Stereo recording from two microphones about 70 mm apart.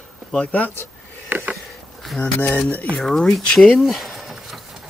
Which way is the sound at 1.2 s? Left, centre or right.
Right.